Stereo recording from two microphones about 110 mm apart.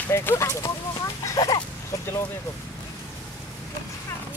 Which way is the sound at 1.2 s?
30° left (ahead or behind).